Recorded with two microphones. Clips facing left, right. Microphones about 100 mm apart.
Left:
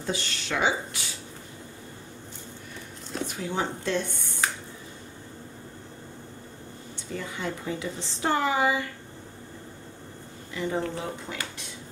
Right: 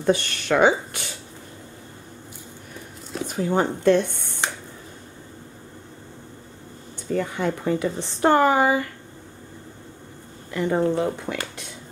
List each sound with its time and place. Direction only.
0.0 s speech: 55° right (ahead or behind)
3.3 s speech: 45° right (ahead or behind)
7.1 s speech: 55° right (ahead or behind)
10.5 s speech: 55° right (ahead or behind)